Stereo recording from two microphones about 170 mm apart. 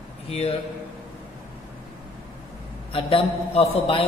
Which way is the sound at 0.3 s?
35° left (ahead or behind).